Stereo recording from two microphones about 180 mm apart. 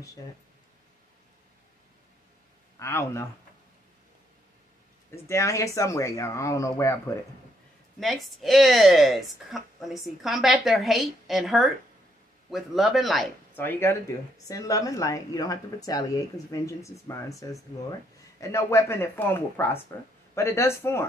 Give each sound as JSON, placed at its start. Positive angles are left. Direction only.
{"t": 2.8, "sound": "speech", "side_deg": 15}
{"t": 5.1, "sound": "speech", "side_deg": 15}
{"t": 8.0, "sound": "a woman's voice", "side_deg": 0}
{"t": 13.6, "sound": "speech", "side_deg": 10}